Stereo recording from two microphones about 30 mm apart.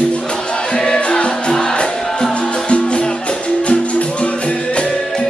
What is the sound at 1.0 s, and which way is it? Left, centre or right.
Music, left.